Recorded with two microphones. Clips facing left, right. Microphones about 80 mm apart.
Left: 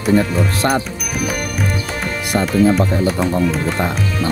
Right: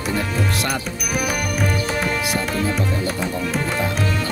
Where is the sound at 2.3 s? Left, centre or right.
Left.